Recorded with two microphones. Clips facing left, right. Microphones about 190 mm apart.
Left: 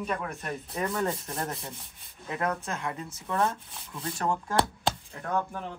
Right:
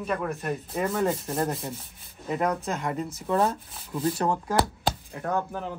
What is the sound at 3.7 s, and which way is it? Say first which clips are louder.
Speech: right 9 dB; centre (ahead or behind).